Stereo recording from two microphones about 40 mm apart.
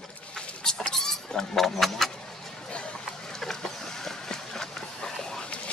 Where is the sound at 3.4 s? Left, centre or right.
Centre.